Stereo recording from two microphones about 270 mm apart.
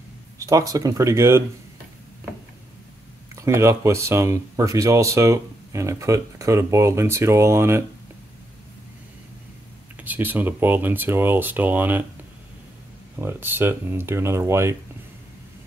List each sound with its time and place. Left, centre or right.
0.4 s speech: centre
3.3 s speech: centre
10.0 s speech: centre
13.2 s speech: centre